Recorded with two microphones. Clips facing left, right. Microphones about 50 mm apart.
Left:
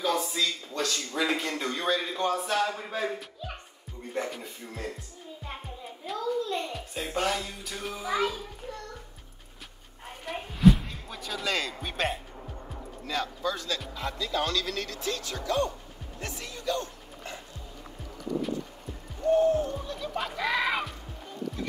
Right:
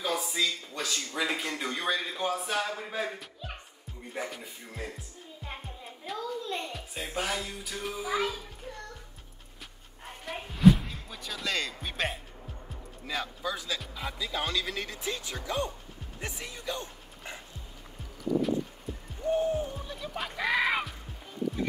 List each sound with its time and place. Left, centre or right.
0.0 s speech: centre
6.0 s speech: centre
10.2 s music: centre
13.0 s speech: centre
19.2 s speech: centre